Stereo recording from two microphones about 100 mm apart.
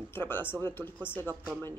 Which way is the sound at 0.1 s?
20° left (ahead or behind).